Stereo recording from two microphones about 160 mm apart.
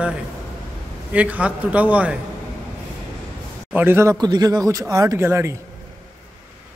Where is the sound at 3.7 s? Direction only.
15° right (ahead or behind).